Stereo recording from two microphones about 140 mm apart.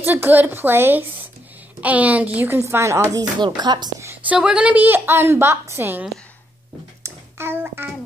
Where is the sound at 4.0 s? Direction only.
20° right (ahead or behind).